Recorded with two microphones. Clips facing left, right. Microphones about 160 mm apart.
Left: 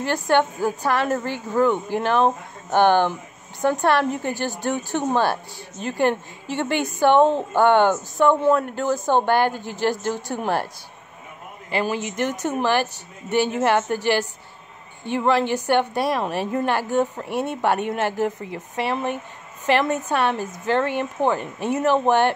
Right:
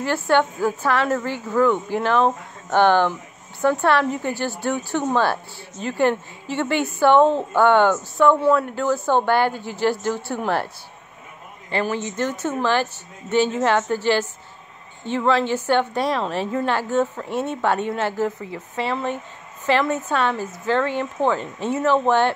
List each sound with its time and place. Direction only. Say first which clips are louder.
0.0 s a woman's voice: even; 15° left (ahead or behind)
4.6 s a woman's voice: right 1 dB; 15° left (ahead or behind)
11.7 s a woman's voice: even; 15° left (ahead or behind)